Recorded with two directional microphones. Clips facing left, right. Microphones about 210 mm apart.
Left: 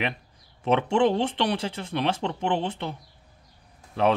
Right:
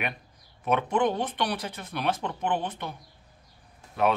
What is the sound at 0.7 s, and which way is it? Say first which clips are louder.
Speech: left 4 dB; 30° left (ahead or behind).